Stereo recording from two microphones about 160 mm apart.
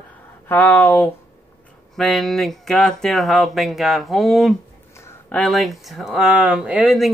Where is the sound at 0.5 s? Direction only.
10° left (ahead or behind).